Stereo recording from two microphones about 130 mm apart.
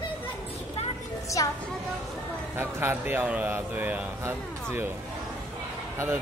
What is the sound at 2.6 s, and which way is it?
A man's voice, 20° right (ahead or behind).